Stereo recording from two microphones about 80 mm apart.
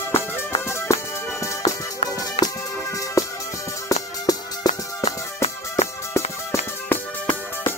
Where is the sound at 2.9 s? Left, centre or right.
Left.